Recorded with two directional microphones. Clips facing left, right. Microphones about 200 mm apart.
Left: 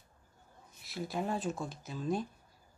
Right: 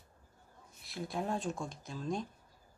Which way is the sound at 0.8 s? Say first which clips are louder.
Left 1 dB; centre (ahead or behind).